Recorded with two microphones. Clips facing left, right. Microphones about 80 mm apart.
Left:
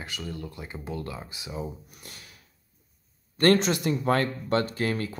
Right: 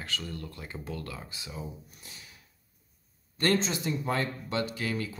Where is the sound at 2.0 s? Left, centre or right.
Left.